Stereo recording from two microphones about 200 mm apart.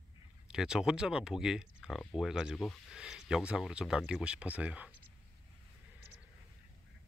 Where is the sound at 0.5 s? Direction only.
5° right (ahead or behind).